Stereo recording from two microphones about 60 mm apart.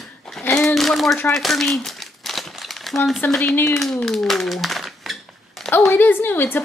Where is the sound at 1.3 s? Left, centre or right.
Centre.